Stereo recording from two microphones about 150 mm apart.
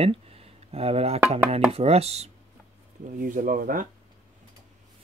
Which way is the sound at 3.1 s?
65° right (ahead or behind).